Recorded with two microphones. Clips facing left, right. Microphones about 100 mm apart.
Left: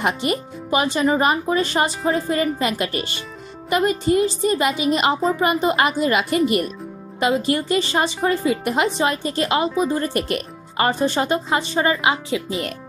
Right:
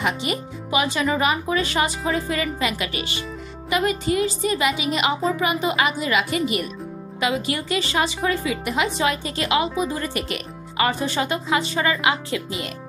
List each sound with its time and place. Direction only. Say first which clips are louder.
0.0 s speech: left 3 dB; 45° left (ahead or behind); by 12.4 s 25° left (ahead or behind)